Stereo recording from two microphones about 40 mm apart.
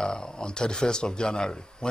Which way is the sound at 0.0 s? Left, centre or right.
Centre.